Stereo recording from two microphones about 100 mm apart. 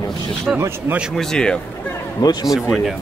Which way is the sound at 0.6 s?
25° right (ahead or behind).